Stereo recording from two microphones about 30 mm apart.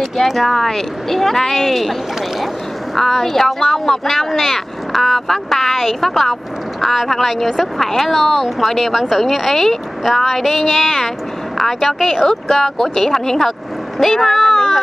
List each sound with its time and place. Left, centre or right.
0.0 s speech: centre
3.0 s a woman's voice: centre
13.9 s a sound: centre